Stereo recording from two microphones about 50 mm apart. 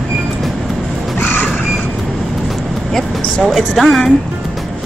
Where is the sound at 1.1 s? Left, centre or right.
Left.